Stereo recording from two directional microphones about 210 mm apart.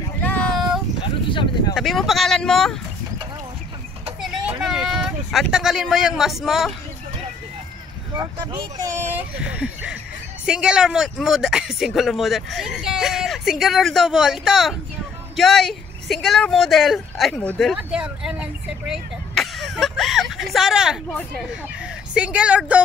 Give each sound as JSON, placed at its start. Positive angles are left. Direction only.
{"t": 0.2, "sound": "child singing", "side_deg": 5}
{"t": 1.0, "sound": "a sound", "side_deg": 25}
{"t": 1.8, "sound": "speech", "side_deg": 0}
{"t": 4.6, "sound": "speech", "side_deg": 0}
{"t": 8.2, "sound": "speech", "side_deg": -15}
{"t": 21.1, "sound": "speech", "side_deg": 10}
{"t": 22.1, "sound": "speech", "side_deg": -5}